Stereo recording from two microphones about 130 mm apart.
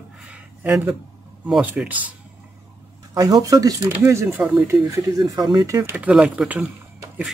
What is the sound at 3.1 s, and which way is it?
Speech, 30° right (ahead or behind).